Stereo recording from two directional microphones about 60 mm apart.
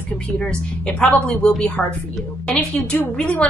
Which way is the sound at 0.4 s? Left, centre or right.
Centre.